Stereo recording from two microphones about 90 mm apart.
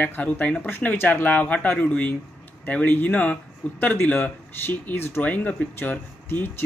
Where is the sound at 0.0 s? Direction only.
20° left (ahead or behind).